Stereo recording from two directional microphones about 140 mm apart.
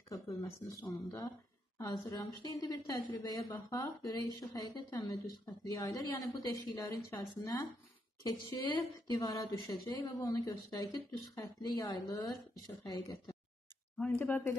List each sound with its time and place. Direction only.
0.1 s a woman's voice: 25° left (ahead or behind)
13.9 s speech: 10° left (ahead or behind)